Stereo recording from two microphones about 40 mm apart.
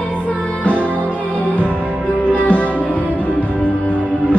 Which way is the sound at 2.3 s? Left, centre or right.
Left.